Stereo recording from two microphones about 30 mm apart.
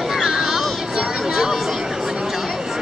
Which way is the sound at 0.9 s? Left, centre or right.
Centre.